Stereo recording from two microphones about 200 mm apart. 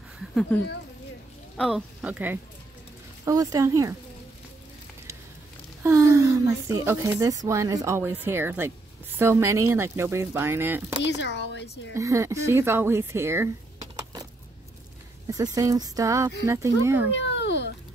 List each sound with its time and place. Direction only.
0.3 s speech: centre (ahead or behind)
1.6 s a woman's voice: 5° right (ahead or behind)
5.8 s a woman's voice: 15° right (ahead or behind)
11.0 s speech: 60° left (ahead or behind)
11.9 s speech: 15° right (ahead or behind)
15.2 s a woman's voice: 20° right (ahead or behind)
17.1 s a sound: 60° left (ahead or behind)